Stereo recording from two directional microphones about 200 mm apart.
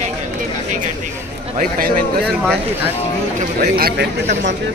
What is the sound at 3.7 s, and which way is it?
Speech, 50° right (ahead or behind).